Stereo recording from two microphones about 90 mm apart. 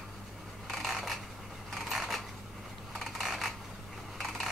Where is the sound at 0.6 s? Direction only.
Centre (ahead or behind).